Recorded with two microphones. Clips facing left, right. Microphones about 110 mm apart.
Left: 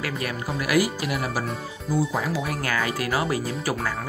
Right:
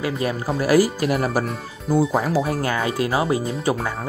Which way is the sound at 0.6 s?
35° right (ahead or behind).